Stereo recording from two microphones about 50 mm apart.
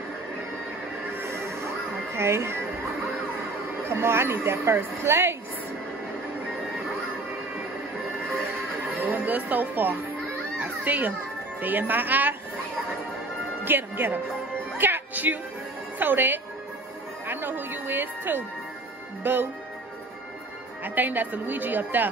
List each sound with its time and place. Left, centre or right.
1.2 s music: right
2.1 s speech: right
3.8 s speech: right
9.0 s speech: right
10.6 s music: right
11.6 s a woman's voice: right
13.7 s speech: right
14.8 s music: right
16.0 s speech: right
20.8 s a woman's voice: right